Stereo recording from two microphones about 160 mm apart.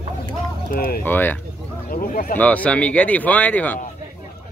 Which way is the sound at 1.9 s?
60° left (ahead or behind).